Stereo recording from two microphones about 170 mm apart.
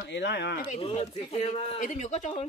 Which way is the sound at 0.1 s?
90° left.